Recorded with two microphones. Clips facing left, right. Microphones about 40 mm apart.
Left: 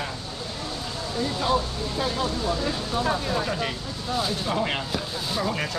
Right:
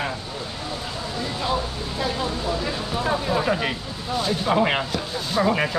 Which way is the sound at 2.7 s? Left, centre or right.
Centre.